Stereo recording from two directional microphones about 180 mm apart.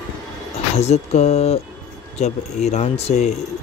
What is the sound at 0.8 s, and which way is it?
Speech, 40° left (ahead or behind).